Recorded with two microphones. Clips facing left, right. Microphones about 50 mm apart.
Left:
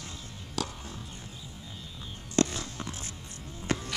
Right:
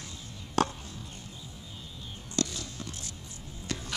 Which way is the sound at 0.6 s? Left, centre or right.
Right.